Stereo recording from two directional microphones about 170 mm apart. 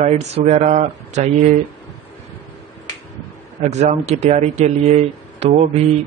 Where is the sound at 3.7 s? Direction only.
40° right (ahead or behind).